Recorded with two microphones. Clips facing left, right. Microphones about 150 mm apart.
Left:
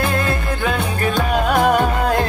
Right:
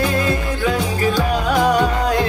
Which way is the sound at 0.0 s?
55° left (ahead or behind).